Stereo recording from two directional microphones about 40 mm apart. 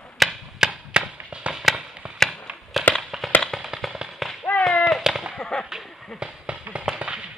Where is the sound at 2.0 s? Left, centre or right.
Right.